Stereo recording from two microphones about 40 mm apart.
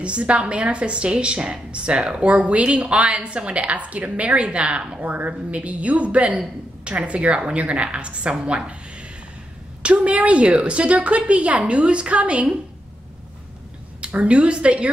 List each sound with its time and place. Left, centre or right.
0.0 s a woman's voice: right
5.0 s a woman's voice: right
9.8 s a woman's voice: right
14.0 s a woman's voice: right